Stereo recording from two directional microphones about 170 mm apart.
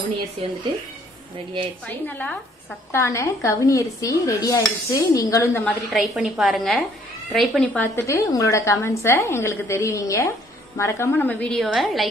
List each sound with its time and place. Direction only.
2.9 s dishes: 15° left (ahead or behind)
5.9 s a woman's voice: centre (ahead or behind)
7.8 s a woman's voice: 15° left (ahead or behind)